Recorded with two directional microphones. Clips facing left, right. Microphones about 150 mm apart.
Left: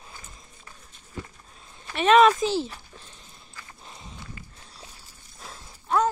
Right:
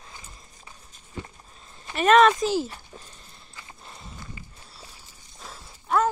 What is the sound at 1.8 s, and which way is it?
Speech, 5° right (ahead or behind).